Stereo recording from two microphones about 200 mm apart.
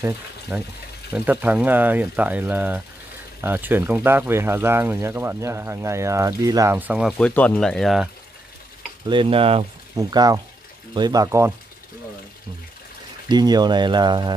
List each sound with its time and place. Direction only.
0.0 s speech: 10° right (ahead or behind)
9.0 s speech: 25° right (ahead or behind)
13.3 s speech: 20° right (ahead or behind)